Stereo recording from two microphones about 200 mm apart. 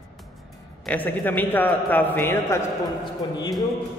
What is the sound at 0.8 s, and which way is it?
A man's voice, 10° left (ahead or behind).